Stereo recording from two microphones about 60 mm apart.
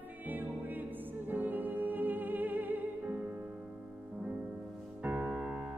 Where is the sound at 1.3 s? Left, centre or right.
Right.